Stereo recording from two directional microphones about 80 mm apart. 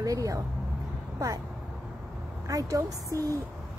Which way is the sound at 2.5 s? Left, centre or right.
Right.